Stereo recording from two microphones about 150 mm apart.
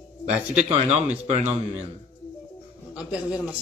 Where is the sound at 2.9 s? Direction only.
10° right (ahead or behind).